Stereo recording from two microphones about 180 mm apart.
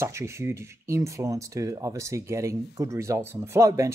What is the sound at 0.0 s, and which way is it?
Speech, 15° right (ahead or behind).